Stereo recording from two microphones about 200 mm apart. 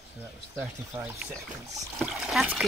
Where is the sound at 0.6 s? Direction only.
5° right (ahead or behind).